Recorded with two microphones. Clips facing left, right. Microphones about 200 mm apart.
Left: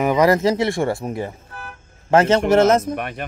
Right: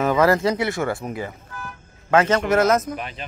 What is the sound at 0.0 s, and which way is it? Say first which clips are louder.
Speech: left 2 dB; 15° left (ahead or behind).